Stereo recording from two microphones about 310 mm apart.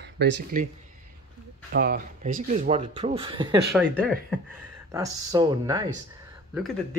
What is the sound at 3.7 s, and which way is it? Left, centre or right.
Speech, centre.